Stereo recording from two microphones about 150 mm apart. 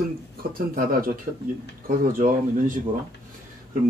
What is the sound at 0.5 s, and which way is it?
Speech, 70° right (ahead or behind).